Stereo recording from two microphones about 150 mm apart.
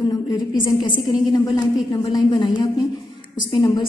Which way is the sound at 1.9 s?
35° left (ahead or behind).